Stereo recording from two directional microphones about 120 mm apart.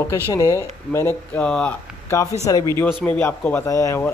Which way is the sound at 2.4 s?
30° left (ahead or behind).